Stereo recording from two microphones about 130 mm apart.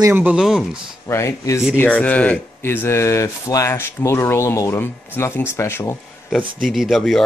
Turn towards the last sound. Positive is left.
turn(degrees=0)  # may be behind; listen again after turning